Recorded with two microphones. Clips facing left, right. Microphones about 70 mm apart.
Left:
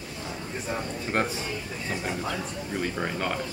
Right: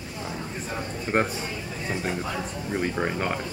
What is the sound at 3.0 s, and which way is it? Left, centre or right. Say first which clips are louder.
Speech: right 2 dB; centre.